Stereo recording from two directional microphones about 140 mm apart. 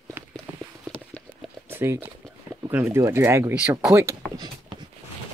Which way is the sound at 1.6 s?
15° right (ahead or behind).